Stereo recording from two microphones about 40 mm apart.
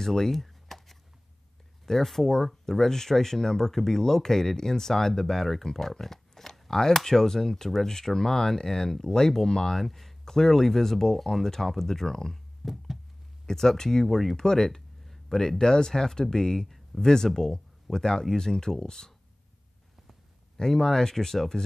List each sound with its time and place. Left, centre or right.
0.0 s a sound: centre
1.9 s speech: centre
12.6 s a sound: centre
13.5 s speech: centre
14.0 s speech: centre
14.3 s speech: centre
20.5 s speech: centre